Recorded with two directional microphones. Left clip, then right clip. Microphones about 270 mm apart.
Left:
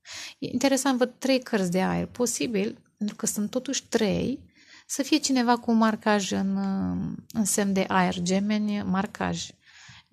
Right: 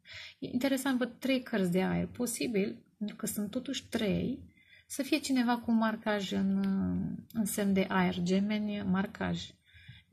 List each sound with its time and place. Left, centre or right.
0.1 s a woman's voice: left